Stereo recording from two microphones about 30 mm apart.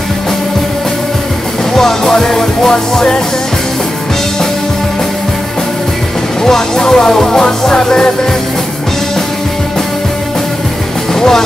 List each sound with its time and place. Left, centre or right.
1.8 s music: centre
6.4 s music: centre
11.1 s music: centre